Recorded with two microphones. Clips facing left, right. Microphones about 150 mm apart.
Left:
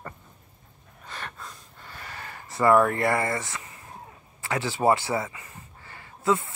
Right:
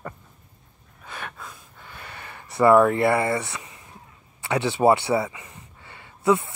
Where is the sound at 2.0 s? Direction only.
70° right (ahead or behind).